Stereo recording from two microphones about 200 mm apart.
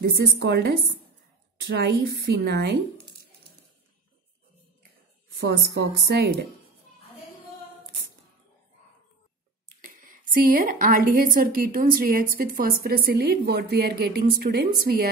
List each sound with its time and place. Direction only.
0.0 s a woman's voice: 55° right (ahead or behind)
5.4 s a woman's voice: 50° right (ahead or behind)
9.8 s a woman's voice: 40° right (ahead or behind)